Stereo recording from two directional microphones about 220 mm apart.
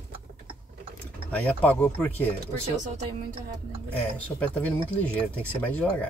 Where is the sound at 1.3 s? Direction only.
5° left (ahead or behind).